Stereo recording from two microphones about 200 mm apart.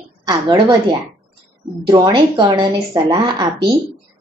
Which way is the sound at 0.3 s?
20° right (ahead or behind).